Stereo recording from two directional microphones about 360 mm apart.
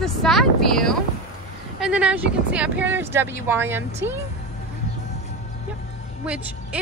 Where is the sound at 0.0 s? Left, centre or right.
Centre.